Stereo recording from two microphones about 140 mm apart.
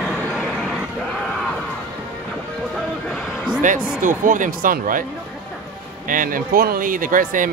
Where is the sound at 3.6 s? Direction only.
65° right (ahead or behind).